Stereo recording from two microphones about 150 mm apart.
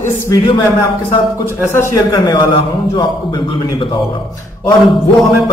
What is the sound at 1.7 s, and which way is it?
Speech, 15° left (ahead or behind).